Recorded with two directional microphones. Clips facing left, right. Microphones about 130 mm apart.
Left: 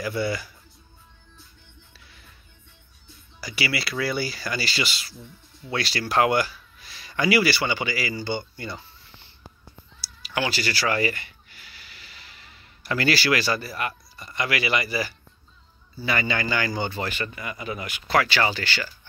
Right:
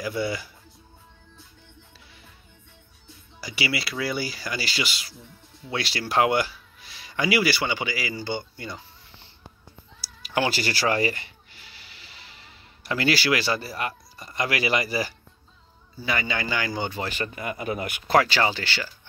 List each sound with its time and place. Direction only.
0.0 s speech: 15° right (ahead or behind)
3.3 s speech: 20° right (ahead or behind)
10.2 s speech: 45° right (ahead or behind)
10.8 s a sound: 35° right (ahead or behind); by 13.6 s 15° right (ahead or behind)
13.6 s speech: 30° right (ahead or behind)
16.0 s speech: 15° right (ahead or behind)
17.1 s speech: 40° right (ahead or behind)
18.1 s speech: 35° right (ahead or behind)
18.4 s speech: 20° right (ahead or behind)